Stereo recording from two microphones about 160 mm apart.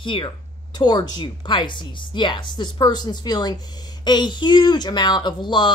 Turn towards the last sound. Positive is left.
turn(degrees=30)  # may be behind; listen again after turning